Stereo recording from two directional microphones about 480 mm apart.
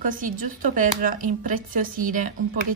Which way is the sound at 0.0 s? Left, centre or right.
Centre.